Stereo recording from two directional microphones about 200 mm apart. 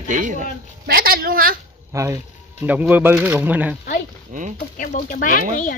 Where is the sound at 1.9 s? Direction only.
15° right (ahead or behind).